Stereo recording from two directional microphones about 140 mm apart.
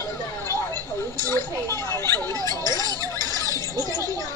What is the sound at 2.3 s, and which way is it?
Music, 25° right (ahead or behind).